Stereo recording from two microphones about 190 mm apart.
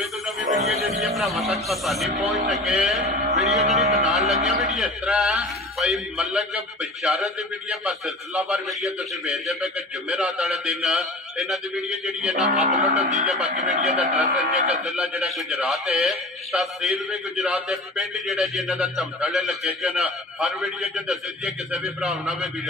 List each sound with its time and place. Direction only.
0.0 s music: centre (ahead or behind)
1.5 s a man's voice: centre (ahead or behind)
2.2 s music: 40° right (ahead or behind)
2.5 s a man's voice: centre (ahead or behind)
3.0 s a sound: 35° right (ahead or behind)
4.0 s music: centre (ahead or behind)
4.7 s a man's voice: centre (ahead or behind)
8.5 s a man's voice: centre (ahead or behind)
12.5 s music: 40° right (ahead or behind)
13.9 s a man's voice: 5° right (ahead or behind)